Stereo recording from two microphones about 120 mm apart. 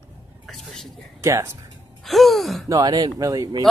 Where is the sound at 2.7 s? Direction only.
30° right (ahead or behind).